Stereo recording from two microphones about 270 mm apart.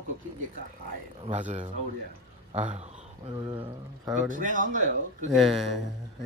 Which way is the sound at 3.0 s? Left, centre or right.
Centre.